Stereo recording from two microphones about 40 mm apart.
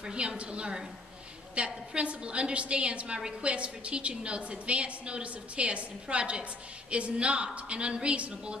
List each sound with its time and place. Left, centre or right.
0.0 s a woman's voice: right